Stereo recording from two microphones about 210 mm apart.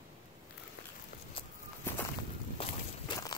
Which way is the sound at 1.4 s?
25° left (ahead or behind).